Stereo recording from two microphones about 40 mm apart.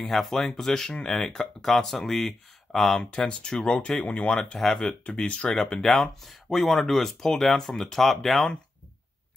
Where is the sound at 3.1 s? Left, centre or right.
Left.